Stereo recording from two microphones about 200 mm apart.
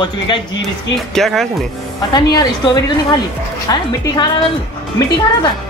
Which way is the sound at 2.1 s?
20° left (ahead or behind).